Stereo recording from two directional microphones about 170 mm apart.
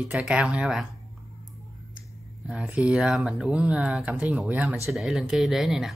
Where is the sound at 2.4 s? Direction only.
10° right (ahead or behind).